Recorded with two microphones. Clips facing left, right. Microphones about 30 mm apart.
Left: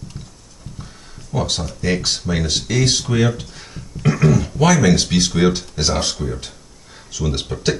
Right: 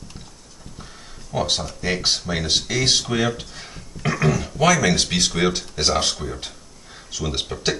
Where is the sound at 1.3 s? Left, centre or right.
Centre.